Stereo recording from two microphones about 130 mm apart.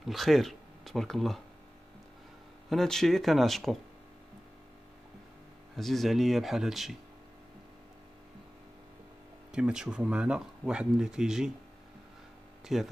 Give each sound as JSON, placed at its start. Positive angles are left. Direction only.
{"t": 0.0, "sound": "speech", "side_deg": 0}
{"t": 2.7, "sound": "speech", "side_deg": 5}
{"t": 5.8, "sound": "speech", "side_deg": 0}
{"t": 9.5, "sound": "speech", "side_deg": -5}
{"t": 12.6, "sound": "speech", "side_deg": 0}